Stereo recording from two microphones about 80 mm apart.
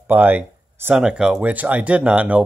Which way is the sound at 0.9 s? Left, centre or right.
Centre.